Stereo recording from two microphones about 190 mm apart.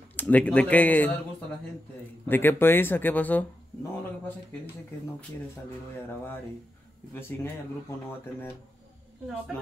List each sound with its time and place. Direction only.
0.1 s speech: 10° left (ahead or behind)
2.2 s speech: 10° left (ahead or behind)